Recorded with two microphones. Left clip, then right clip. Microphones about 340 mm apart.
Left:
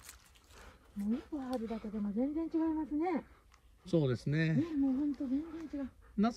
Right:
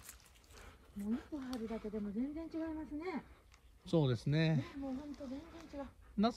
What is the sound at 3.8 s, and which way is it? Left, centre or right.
Speech, centre.